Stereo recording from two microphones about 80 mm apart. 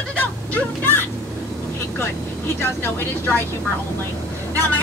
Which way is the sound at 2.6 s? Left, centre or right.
Left.